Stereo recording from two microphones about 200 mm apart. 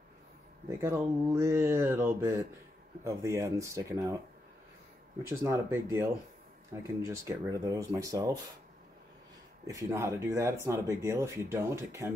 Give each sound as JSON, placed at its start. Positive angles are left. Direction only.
{"t": 0.7, "sound": "speech", "side_deg": -15}
{"t": 5.4, "sound": "speech", "side_deg": -15}
{"t": 9.7, "sound": "speech", "side_deg": -15}